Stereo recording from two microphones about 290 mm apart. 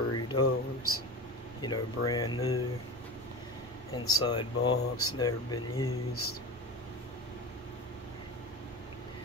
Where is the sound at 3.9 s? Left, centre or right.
Centre.